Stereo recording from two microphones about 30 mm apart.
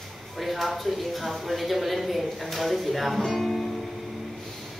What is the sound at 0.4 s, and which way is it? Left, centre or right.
Speech, centre.